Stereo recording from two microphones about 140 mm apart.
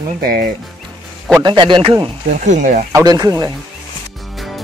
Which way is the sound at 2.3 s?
60° right (ahead or behind).